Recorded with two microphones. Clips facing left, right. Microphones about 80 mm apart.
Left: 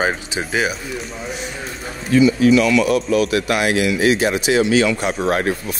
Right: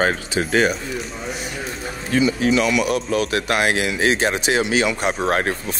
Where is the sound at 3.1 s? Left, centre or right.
Right.